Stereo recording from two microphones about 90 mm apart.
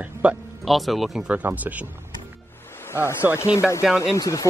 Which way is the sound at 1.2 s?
15° right (ahead or behind).